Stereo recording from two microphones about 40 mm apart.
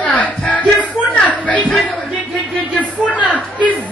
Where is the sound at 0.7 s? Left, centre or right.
Left.